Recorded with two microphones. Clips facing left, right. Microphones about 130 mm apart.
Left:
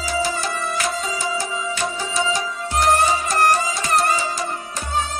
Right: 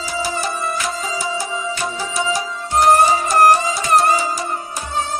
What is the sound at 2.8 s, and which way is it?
Music, 25° right (ahead or behind).